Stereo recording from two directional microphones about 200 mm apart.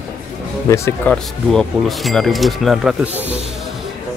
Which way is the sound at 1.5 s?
Centre (ahead or behind).